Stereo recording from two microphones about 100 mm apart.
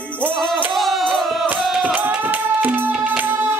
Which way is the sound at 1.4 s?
15° right (ahead or behind).